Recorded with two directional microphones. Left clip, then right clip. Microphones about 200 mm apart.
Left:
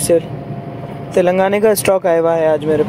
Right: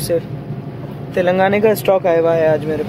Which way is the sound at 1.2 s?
20° left (ahead or behind).